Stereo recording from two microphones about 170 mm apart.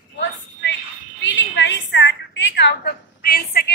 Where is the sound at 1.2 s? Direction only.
90° left; by 3.7 s 65° left (ahead or behind).